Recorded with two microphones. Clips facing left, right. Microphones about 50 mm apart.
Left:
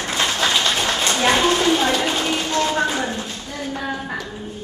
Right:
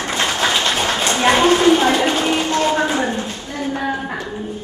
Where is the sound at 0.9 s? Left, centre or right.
Centre.